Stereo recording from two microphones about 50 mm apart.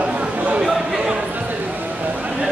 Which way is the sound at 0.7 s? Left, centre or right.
Centre.